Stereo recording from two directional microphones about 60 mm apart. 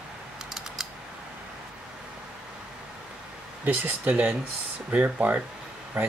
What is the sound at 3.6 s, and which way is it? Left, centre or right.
Speech, right.